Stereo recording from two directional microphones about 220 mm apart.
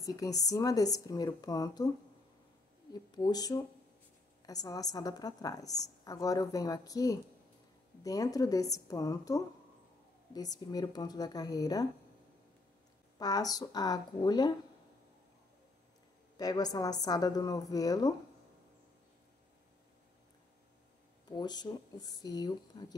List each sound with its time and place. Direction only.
0.0 s a woman's voice: 15° left (ahead or behind)
2.9 s a woman's voice: 15° left (ahead or behind)
13.2 s a woman's voice: 15° left (ahead or behind)
16.3 s a woman's voice: 15° left (ahead or behind)
21.3 s a woman's voice: 20° left (ahead or behind)